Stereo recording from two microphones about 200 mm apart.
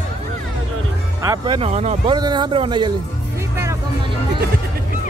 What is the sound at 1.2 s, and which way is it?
Speech, 25° right (ahead or behind).